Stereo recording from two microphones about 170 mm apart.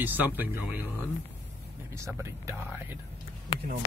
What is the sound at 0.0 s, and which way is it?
Speech, 10° right (ahead or behind).